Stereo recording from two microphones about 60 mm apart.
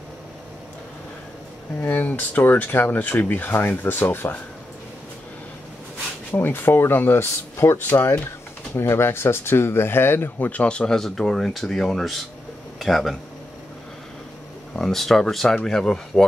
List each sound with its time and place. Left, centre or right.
1.8 s speech: left
6.3 s speech: left
10.5 s speech: centre
11.0 s speech: centre
14.8 s speech: centre